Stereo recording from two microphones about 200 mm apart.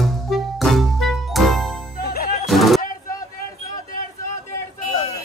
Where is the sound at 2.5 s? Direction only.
Centre (ahead or behind).